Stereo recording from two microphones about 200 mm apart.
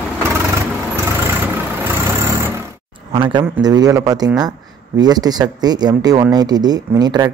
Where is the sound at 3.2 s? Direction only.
20° right (ahead or behind).